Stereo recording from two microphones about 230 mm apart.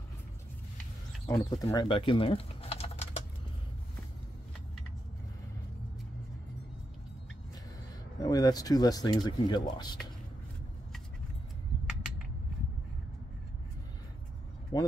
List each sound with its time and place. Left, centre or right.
1.2 s speech: centre
8.2 s speech: centre
14.7 s speech: centre